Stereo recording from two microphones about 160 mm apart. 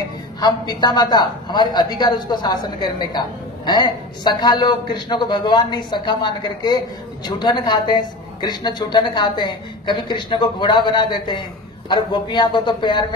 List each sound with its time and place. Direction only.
0.4 s a woman's voice: 25° left (ahead or behind)